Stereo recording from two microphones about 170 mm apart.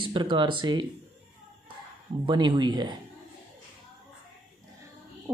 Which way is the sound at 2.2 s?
25° right (ahead or behind).